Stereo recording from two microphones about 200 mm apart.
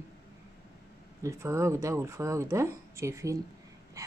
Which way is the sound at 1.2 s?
15° right (ahead or behind).